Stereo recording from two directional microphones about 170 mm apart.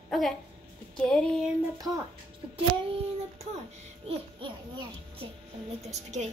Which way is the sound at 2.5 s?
35° right (ahead or behind).